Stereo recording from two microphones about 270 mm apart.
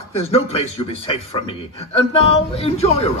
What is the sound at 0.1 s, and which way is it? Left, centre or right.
Speech, left.